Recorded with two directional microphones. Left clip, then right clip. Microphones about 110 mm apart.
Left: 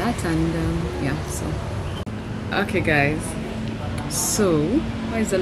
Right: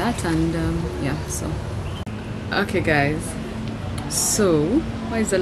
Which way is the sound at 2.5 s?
10° right (ahead or behind).